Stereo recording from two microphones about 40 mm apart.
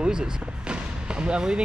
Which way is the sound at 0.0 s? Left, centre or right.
Right.